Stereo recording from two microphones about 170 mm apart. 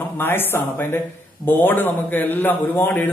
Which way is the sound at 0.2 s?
10° left (ahead or behind).